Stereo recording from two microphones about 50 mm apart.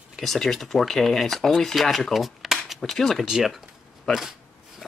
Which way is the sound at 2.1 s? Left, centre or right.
Centre.